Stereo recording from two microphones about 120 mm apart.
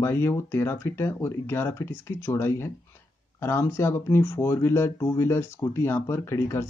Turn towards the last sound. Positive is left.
turn(degrees=20)  # may be behind; listen again after turning